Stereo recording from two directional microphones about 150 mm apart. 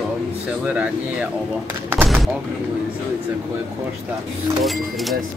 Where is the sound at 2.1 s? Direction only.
Centre (ahead or behind).